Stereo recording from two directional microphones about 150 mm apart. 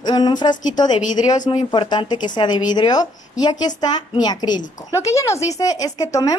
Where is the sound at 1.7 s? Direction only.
30° left (ahead or behind).